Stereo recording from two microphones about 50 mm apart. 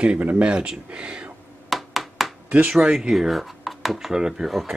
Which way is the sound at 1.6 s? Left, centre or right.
Centre.